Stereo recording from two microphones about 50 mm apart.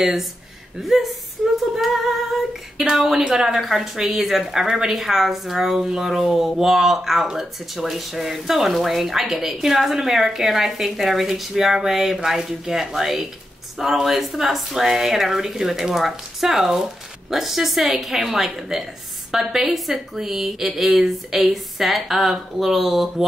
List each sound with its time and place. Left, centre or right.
0.0 s speech: centre
0.8 s female singing: centre
7.2 s speech: centre